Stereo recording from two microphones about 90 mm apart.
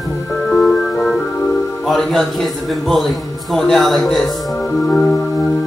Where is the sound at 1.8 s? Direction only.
5° left (ahead or behind).